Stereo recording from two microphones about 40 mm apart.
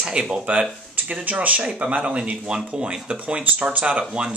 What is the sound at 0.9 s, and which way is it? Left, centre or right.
Speech, right.